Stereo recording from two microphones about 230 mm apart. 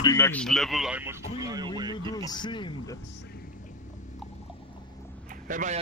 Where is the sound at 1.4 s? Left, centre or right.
Centre.